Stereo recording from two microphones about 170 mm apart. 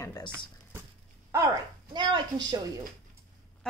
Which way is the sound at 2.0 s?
25° right (ahead or behind).